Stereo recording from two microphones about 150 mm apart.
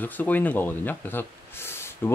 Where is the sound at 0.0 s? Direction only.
10° left (ahead or behind).